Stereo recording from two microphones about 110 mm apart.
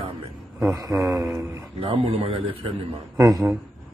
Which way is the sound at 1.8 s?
55° right (ahead or behind).